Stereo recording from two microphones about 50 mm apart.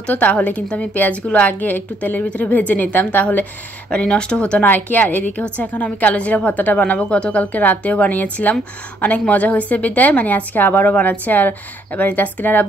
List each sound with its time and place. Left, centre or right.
0.1 s a woman's voice: left
3.9 s a woman's voice: left
4.6 s a woman's voice: left
5.0 s a woman's voice: left
7.5 s a woman's voice: left